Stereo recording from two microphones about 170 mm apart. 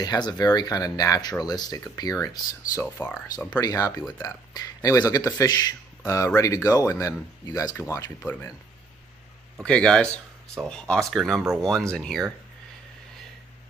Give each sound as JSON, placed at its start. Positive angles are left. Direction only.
{"t": 0.0, "sound": "speech", "side_deg": 25}
{"t": 3.6, "sound": "speech", "side_deg": 20}
{"t": 9.7, "sound": "speech", "side_deg": 5}